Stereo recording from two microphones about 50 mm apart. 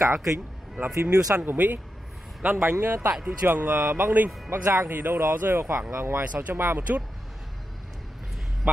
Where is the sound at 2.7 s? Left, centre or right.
Right.